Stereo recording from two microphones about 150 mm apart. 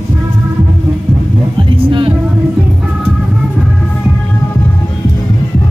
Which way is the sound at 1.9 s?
35° right (ahead or behind).